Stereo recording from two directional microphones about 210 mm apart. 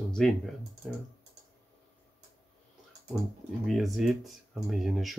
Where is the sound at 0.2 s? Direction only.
Centre (ahead or behind).